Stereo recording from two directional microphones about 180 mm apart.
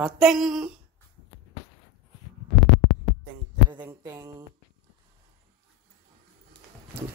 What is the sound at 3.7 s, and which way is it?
Speech, 15° right (ahead or behind).